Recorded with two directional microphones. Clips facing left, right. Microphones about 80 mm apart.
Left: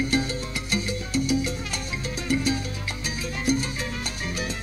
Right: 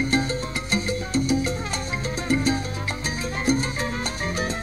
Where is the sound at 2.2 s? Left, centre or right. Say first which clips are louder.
Right 2 dB; right.